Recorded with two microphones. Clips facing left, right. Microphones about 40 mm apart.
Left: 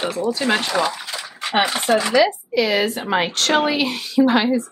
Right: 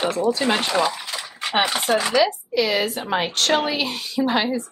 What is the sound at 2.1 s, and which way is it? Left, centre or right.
A woman's voice, centre.